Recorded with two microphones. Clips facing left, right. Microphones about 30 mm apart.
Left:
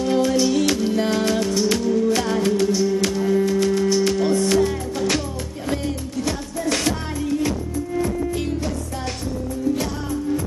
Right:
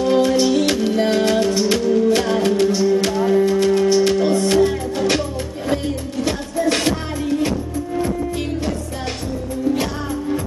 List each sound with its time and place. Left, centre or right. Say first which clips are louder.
0.0 s music: right 3 dB; right
1.5 s music: right 3 dB; right
6.2 s music: right 6 dB; right